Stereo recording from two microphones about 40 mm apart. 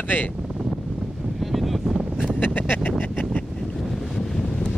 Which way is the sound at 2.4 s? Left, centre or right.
Left.